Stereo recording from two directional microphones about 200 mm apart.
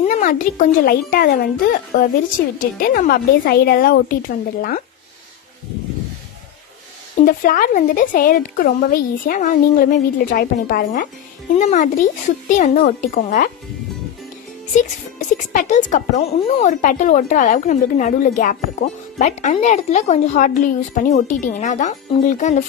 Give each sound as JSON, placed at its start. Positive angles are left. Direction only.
{"t": 0.0, "sound": "speech", "side_deg": 40}
{"t": 7.2, "sound": "speech", "side_deg": 40}
{"t": 15.3, "sound": "speech", "side_deg": 40}